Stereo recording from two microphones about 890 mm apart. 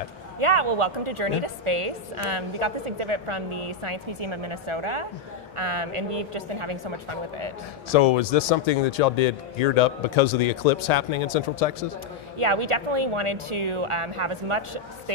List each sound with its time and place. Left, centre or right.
0.4 s a woman's voice: right
7.9 s speech: left
12.4 s a woman's voice: right